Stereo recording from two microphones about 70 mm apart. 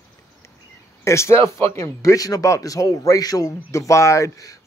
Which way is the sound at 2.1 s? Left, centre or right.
Left.